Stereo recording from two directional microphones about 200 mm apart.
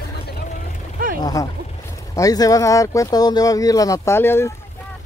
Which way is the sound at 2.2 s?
15° left (ahead or behind).